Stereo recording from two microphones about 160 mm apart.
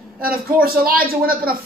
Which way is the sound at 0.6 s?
65° right (ahead or behind).